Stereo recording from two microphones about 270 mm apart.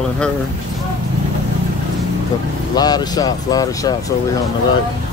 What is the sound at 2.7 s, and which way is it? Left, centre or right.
Speech, centre.